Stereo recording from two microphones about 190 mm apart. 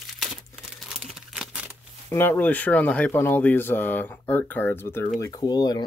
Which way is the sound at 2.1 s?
10° left (ahead or behind).